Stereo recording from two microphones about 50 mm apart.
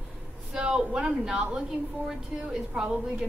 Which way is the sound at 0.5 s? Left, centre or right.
Centre.